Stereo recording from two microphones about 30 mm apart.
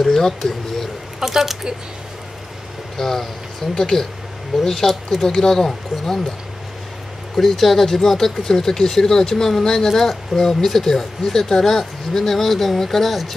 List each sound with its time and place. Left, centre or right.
0.0 s speech: centre
1.2 s speech: centre
3.0 s speech: centre
7.3 s speech: centre